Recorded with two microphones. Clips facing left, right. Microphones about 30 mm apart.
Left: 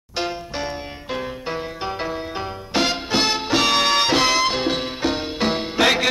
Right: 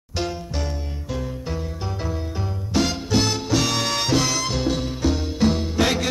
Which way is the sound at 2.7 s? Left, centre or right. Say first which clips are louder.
Left 1 dB; left.